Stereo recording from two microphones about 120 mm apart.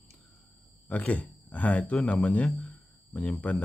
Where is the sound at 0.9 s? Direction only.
10° left (ahead or behind).